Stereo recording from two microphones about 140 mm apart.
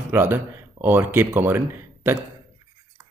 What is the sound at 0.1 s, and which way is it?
Speech, 15° right (ahead or behind).